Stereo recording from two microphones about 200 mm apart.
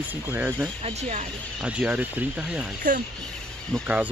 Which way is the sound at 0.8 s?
35° right (ahead or behind).